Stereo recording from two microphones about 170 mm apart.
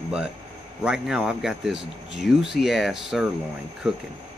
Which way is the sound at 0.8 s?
5° right (ahead or behind).